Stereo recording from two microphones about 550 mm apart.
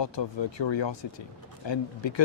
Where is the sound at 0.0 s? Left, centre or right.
Left.